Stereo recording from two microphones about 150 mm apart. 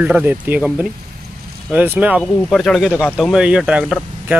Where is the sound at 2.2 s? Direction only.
Centre (ahead or behind).